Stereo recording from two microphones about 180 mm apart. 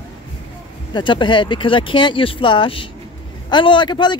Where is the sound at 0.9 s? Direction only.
25° left (ahead or behind).